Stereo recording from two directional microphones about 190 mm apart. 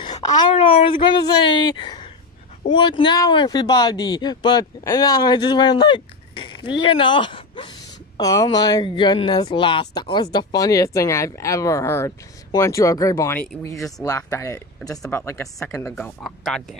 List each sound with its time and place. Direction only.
0.0 s speech: 20° left (ahead or behind)
16.0 s speech: 5° left (ahead or behind)